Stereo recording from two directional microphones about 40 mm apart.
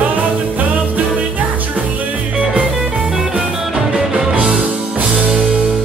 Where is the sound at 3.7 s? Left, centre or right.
Centre.